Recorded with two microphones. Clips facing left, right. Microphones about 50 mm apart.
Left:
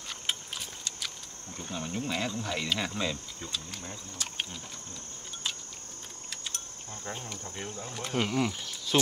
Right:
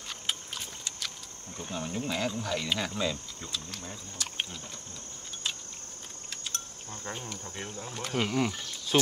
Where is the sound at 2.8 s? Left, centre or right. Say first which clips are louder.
Right 1 dB; left.